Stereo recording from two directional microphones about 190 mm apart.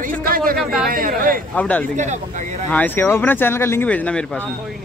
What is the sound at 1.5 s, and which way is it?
Speech, 5° left (ahead or behind).